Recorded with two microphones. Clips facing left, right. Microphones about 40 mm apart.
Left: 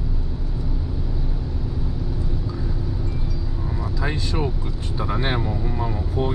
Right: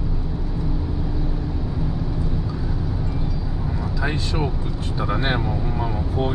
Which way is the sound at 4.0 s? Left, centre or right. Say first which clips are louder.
Right 1 dB; centre.